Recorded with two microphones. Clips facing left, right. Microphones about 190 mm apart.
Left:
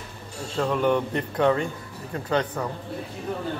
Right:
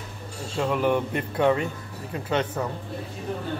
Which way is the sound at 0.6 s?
10° right (ahead or behind).